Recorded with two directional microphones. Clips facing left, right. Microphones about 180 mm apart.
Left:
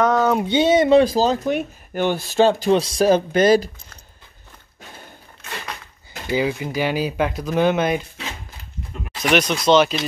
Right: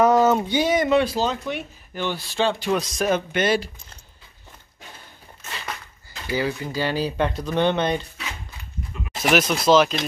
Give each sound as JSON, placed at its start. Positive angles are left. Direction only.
{"t": 0.0, "sound": "a sound", "side_deg": -5}
{"t": 0.5, "sound": "speech", "side_deg": 25}
{"t": 2.7, "sound": "speech", "side_deg": 30}
{"t": 6.3, "sound": "speech", "side_deg": 15}
{"t": 9.2, "sound": "speech", "side_deg": -5}